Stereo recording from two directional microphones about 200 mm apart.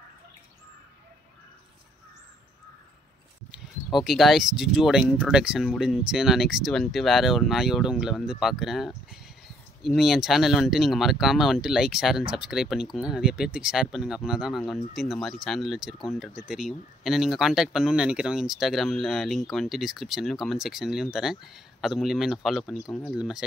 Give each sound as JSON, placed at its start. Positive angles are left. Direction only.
{"t": 3.5, "sound": "speech", "side_deg": 0}